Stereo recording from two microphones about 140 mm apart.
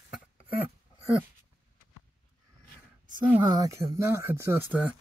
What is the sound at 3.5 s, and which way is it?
Speech, 25° right (ahead or behind).